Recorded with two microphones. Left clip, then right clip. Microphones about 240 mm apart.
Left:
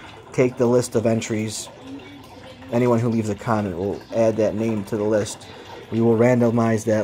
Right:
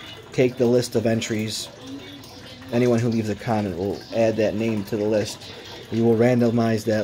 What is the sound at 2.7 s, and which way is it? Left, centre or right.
Speech, centre.